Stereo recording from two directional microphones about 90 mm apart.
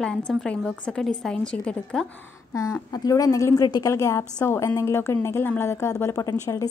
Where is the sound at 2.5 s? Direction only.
40° left (ahead or behind).